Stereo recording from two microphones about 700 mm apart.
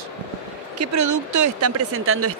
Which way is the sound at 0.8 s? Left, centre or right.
Right.